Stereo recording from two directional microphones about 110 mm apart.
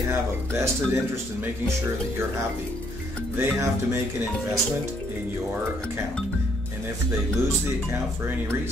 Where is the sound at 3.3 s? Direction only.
20° right (ahead or behind).